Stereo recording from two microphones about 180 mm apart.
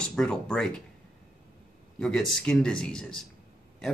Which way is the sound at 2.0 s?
5° left (ahead or behind).